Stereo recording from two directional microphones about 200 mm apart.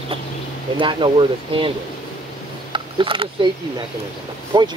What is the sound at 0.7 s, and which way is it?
Speech, 25° right (ahead or behind).